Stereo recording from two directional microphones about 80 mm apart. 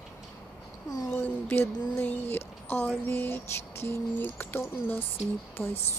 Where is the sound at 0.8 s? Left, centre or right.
Left.